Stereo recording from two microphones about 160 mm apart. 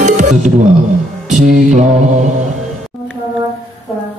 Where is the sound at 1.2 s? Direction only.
50° right (ahead or behind).